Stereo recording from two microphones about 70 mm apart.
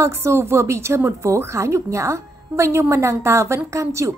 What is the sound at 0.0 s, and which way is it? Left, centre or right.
A woman's voice, right.